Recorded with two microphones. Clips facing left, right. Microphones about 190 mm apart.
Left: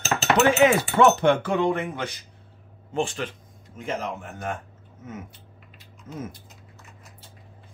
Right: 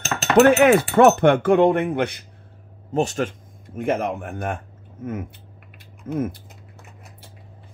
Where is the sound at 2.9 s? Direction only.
45° right (ahead or behind).